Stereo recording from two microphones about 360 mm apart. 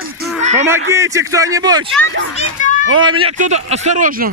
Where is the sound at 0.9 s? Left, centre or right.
Centre.